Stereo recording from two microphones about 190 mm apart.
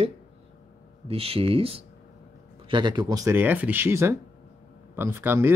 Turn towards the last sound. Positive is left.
turn(degrees=-10)  # may be behind; listen again after turning